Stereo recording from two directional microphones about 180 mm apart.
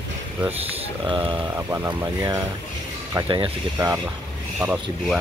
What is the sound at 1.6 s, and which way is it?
Speech, 10° right (ahead or behind).